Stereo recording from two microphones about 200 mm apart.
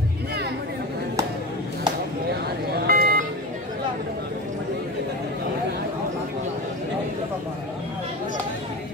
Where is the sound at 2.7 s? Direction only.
50° right (ahead or behind).